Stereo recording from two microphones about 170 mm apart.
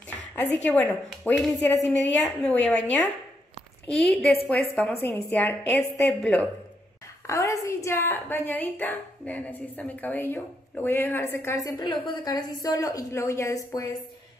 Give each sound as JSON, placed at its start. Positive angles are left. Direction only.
{"t": 0.4, "sound": "a woman's voice", "side_deg": 10}
{"t": 3.8, "sound": "a woman's voice", "side_deg": 5}